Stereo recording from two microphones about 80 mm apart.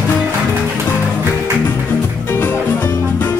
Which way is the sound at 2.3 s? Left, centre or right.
Left.